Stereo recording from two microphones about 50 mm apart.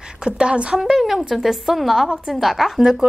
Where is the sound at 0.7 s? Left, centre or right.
Centre.